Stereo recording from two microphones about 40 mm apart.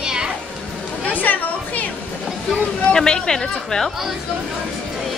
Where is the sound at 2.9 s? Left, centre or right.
Centre.